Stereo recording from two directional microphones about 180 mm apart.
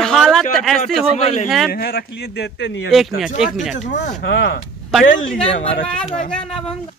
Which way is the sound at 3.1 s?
Centre (ahead or behind).